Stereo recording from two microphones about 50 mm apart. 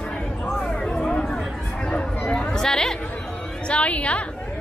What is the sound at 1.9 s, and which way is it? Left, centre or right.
Chatter, centre.